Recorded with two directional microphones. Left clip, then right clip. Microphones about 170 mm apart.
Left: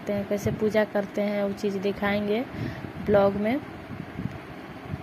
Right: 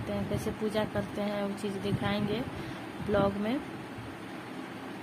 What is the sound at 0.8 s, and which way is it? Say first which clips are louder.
Speech: left 8 dB; 25° left (ahead or behind).